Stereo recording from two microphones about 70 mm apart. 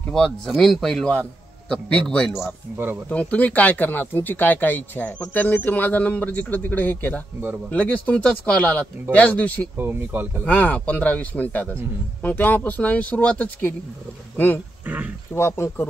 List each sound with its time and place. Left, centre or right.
0.1 s a man's voice: centre
9.8 s speech: right
10.4 s speech: left